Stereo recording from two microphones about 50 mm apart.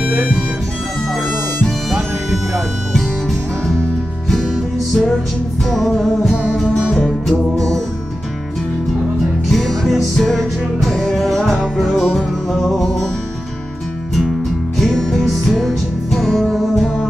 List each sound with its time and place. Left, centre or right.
0.0 s music: right
1.9 s music: centre
2.9 s music: centre
6.7 s music: centre
7.2 s music: centre
9.5 s music: centre
11.5 s music: centre
12.0 s music: centre
14.8 s music: centre